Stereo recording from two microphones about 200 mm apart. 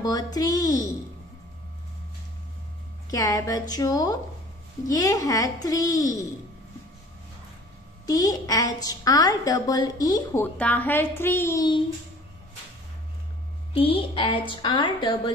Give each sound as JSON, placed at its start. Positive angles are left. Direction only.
{"t": 0.0, "sound": "a woman's voice", "side_deg": 20}
{"t": 3.1, "sound": "a woman's voice", "side_deg": 15}
{"t": 8.1, "sound": "a woman's voice", "side_deg": 20}
{"t": 13.7, "sound": "a woman's voice", "side_deg": 25}